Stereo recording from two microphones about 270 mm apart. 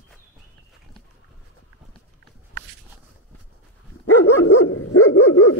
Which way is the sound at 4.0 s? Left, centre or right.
Left.